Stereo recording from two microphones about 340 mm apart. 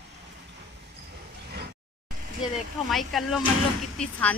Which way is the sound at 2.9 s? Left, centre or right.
Centre.